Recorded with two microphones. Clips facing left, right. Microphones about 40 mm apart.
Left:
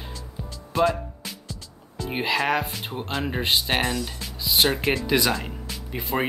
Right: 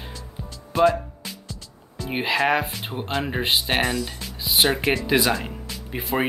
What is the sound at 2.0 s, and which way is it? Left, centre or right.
Speech, centre.